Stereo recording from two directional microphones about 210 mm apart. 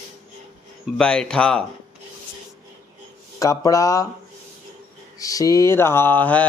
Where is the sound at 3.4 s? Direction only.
15° left (ahead or behind).